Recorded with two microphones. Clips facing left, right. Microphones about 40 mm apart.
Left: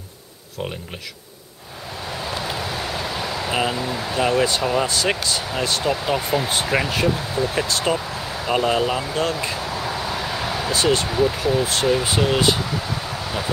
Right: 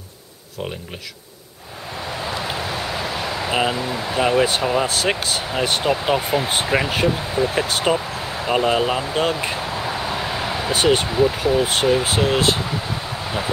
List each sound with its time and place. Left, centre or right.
2.2 s vehicle: centre
4.6 s speech: centre; by 6.1 s right
6.1 s speech: centre
7.6 s speech: right
8.5 s speech: centre
9.1 s a sound: right; by 10.7 s centre
10.7 s speech: right
11.1 s speech: centre
11.8 s a sound: centre